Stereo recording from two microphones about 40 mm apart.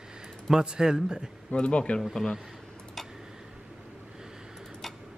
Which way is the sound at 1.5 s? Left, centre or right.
Left.